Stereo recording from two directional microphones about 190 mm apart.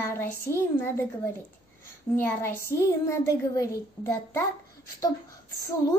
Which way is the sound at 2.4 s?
15° left (ahead or behind).